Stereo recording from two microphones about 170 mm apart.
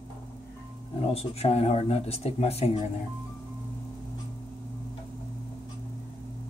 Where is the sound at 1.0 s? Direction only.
35° left (ahead or behind).